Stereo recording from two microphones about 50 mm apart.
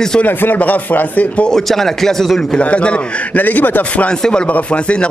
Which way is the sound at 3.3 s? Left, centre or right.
Left.